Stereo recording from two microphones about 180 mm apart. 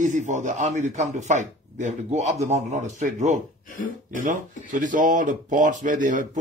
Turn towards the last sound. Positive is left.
turn(degrees=-45)  # may be behind; listen again after turning